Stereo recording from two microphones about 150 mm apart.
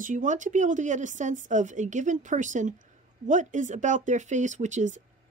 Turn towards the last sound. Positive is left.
turn(degrees=-55)  # may be behind; listen again after turning